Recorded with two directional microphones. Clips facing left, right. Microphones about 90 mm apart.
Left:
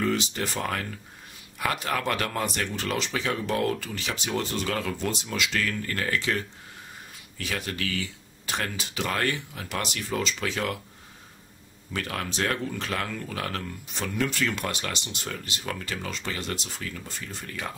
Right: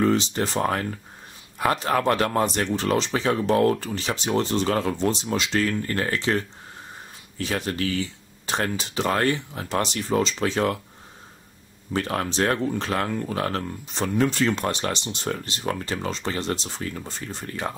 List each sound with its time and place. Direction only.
0.0 s speech: 35° right (ahead or behind)
11.9 s speech: 35° right (ahead or behind)